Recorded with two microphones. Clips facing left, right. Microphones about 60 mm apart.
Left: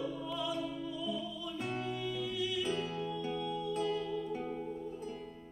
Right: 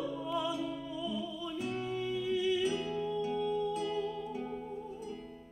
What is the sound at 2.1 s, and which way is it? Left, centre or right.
Music, centre.